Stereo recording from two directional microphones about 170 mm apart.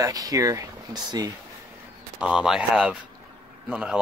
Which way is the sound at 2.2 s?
5° right (ahead or behind).